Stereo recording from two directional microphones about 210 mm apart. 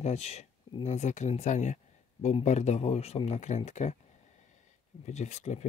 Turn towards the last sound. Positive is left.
turn(degrees=35)  # may be behind; listen again after turning